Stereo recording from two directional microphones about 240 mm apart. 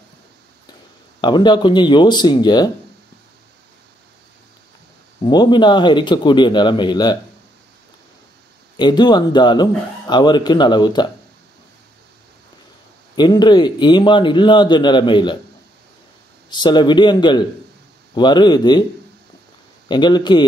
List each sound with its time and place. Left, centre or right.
1.2 s a man's voice: centre
5.2 s a man's voice: centre
8.7 s speech: centre
13.1 s a man's voice: centre
16.4 s a man's voice: centre
19.9 s speech: centre